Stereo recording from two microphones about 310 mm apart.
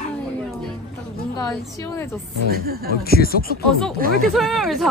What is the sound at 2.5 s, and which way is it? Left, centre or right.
Speech, right.